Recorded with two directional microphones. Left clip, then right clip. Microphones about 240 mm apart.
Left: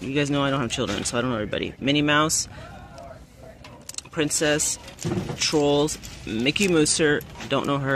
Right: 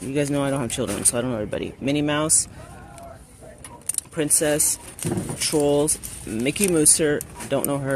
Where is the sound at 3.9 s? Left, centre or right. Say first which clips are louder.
Even; centre.